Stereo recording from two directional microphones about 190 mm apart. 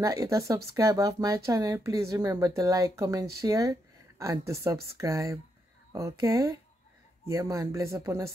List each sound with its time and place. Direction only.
0.0 s speech: 15° right (ahead or behind)